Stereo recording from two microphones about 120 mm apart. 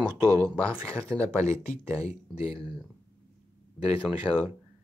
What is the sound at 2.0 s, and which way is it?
Speech, 65° left (ahead or behind).